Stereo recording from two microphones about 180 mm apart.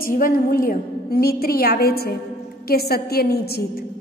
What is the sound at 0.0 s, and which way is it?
A woman's voice, 55° left (ahead or behind).